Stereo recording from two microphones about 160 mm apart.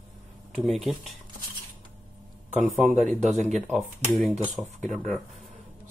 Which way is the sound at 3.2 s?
45° right (ahead or behind).